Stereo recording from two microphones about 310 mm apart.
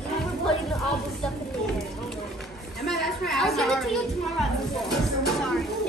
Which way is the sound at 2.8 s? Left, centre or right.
Centre.